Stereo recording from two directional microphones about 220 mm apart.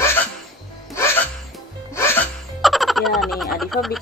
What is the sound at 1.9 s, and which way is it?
Music, 10° left (ahead or behind).